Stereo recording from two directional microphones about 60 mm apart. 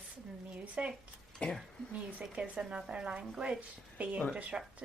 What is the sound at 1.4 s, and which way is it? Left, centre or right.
Speech, centre.